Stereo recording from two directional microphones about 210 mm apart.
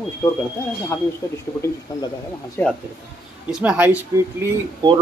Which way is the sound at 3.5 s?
5° right (ahead or behind).